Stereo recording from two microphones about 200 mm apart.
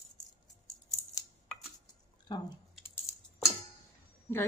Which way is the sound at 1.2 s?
15° left (ahead or behind).